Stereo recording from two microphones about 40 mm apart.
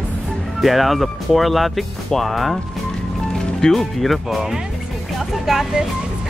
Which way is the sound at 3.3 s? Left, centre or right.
Centre.